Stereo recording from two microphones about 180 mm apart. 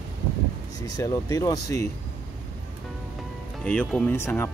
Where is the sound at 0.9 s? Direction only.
20° left (ahead or behind).